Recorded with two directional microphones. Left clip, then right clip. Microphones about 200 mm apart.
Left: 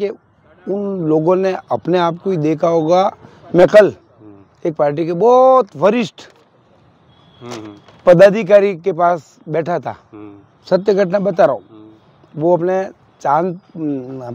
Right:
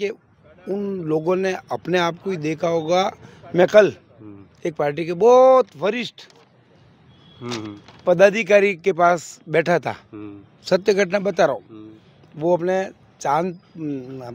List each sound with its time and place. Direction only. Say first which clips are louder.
0.7 s speech: left 7 dB; 25° left (ahead or behind)
5.8 s speech: left 9 dB; 45° left (ahead or behind)
7.4 s speech: even; 85° right
8.2 s speech: left 3 dB; 25° left (ahead or behind)